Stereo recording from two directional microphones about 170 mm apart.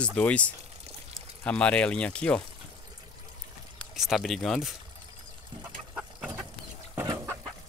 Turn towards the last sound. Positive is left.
turn(degrees=-15)  # may be behind; listen again after turning